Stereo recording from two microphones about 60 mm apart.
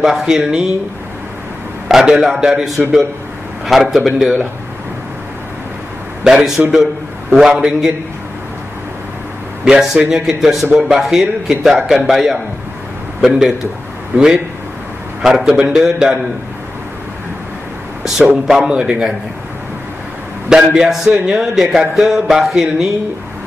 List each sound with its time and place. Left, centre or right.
0.0 s a man's voice: centre
1.9 s a man's voice: centre
6.2 s speech: centre
9.7 s speech: centre
14.1 s a man's voice: right
15.2 s speech: centre
18.2 s speech: centre
20.4 s speech: centre